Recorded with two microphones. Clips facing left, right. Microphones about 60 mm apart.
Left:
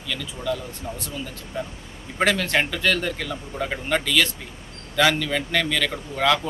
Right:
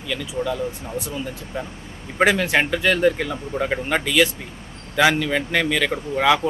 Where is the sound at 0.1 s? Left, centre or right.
Centre.